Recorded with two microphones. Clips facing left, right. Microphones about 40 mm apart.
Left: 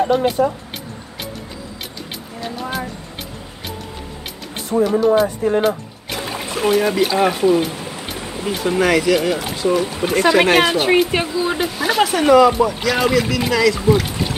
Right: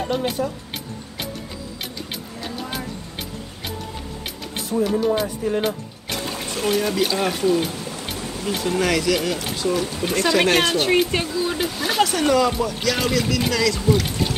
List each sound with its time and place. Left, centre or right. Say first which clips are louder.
0.0 s speech: left 7 dB; centre
4.7 s speech: left 5 dB; left
5.0 s speech: left 6 dB; centre
5.6 s a sound: left 6 dB; centre
7.2 s speech: left 7 dB; centre
7.8 s music: left 2 dB; left
8.2 s stream: left 2 dB; left
8.5 s speech: left 5 dB; centre
11.6 s speech: left 3 dB; centre